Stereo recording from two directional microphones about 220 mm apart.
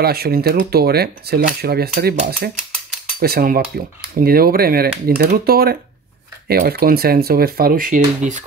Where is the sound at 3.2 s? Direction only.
45° right (ahead or behind).